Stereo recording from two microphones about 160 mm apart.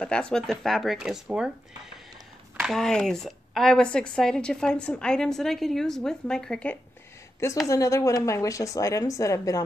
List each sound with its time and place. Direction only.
0.0 s speech: 5° left (ahead or behind)
2.6 s speech: 5° left (ahead or behind)
7.6 s a woman's voice: 20° left (ahead or behind)